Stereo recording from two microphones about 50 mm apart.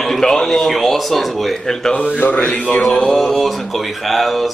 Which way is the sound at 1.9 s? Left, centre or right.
Left.